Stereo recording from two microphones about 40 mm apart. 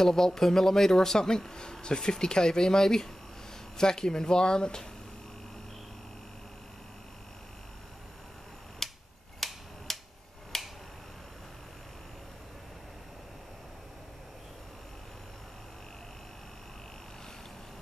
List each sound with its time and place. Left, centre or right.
0.0 s speech: centre
8.8 s tick-tock: centre
9.9 s a sound: centre
10.5 s finger snapping: centre